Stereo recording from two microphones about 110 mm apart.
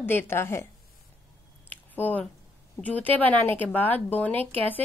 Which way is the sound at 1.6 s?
15° left (ahead or behind).